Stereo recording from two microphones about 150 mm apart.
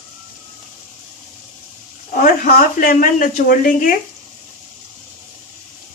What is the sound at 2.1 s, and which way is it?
Speech, 65° left (ahead or behind).